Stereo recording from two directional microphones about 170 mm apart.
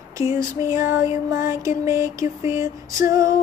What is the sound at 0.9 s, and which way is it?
Music, 15° right (ahead or behind).